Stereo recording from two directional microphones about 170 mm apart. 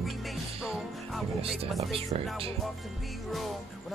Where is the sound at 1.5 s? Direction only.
Centre (ahead or behind).